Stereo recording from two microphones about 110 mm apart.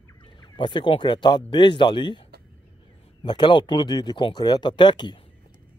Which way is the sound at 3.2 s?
45° left (ahead or behind).